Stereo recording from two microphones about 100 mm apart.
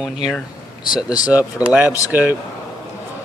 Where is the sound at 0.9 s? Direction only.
40° left (ahead or behind).